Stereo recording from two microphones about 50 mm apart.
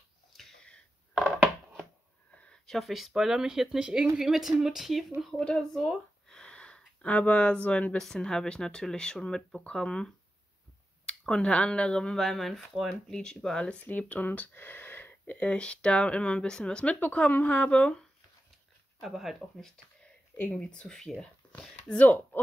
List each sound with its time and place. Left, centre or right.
2.3 s a sound: left
2.6 s speech: centre
5.6 s speech: centre
6.2 s a sound: centre
7.0 s speech: left
8.0 s speech: centre
13.1 s speech: centre
13.8 s speech: left
15.3 s speech: left
18.9 s speech: centre
20.5 s speech: left
20.9 s speech: centre
21.8 s speech: left